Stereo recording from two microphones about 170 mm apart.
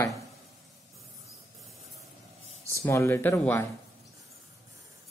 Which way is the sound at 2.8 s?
15° left (ahead or behind).